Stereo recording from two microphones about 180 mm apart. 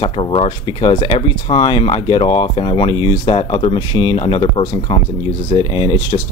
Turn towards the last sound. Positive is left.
turn(degrees=25)  # may be behind; listen again after turning